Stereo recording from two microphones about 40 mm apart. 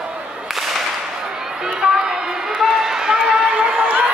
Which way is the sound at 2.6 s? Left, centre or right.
Centre.